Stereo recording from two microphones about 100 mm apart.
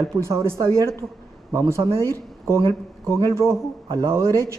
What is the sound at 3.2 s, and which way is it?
A man's voice, 30° right (ahead or behind).